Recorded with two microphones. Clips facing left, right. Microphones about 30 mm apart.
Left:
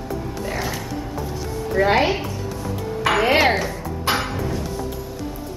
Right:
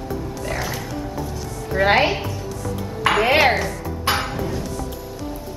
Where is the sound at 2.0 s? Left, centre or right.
Centre.